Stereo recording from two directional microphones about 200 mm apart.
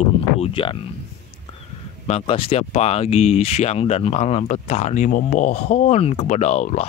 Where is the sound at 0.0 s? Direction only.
30° left (ahead or behind).